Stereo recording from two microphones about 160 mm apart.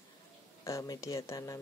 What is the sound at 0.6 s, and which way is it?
Speech, 20° left (ahead or behind).